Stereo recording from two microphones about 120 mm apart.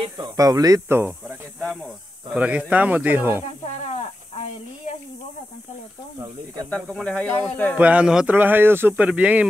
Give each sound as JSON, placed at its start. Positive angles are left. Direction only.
{"t": 0.0, "sound": "speech", "side_deg": -35}
{"t": 2.3, "sound": "speech", "side_deg": -10}
{"t": 3.8, "sound": "snake", "side_deg": 60}
{"t": 6.1, "sound": "speech", "side_deg": -30}
{"t": 6.7, "sound": "speech", "side_deg": 5}
{"t": 7.7, "sound": "speech", "side_deg": -10}